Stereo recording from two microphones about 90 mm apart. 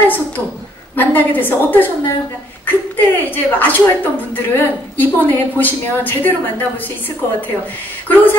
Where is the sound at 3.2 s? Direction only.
20° left (ahead or behind).